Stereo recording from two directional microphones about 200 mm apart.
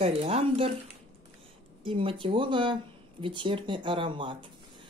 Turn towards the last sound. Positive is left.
turn(degrees=-25)  # may be behind; listen again after turning